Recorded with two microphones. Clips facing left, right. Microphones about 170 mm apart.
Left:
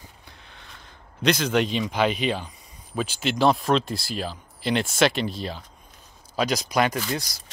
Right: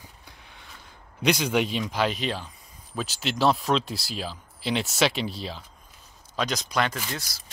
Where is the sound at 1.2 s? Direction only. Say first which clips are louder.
Left 2 dB; 10° right (ahead or behind).